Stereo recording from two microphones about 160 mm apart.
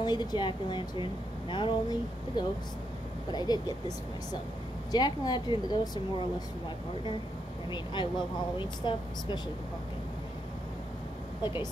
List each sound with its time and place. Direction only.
0.0 s a woman's voice: 25° left (ahead or behind)
4.9 s a woman's voice: 25° left (ahead or behind)
7.7 s a woman's voice: 30° left (ahead or behind)